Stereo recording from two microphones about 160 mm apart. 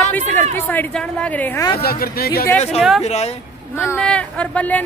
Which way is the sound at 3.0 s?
40° left (ahead or behind).